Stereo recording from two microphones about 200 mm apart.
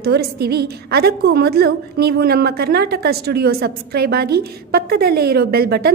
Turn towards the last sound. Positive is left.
turn(degrees=-55)  # may be behind; listen again after turning